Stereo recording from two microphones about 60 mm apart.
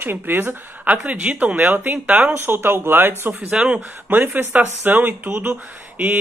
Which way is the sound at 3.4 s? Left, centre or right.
Centre.